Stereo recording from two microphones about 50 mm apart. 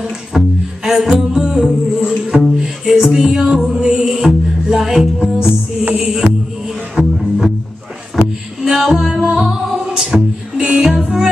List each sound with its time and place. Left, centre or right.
0.3 s music: centre; by 7.1 s right
8.6 s music: centre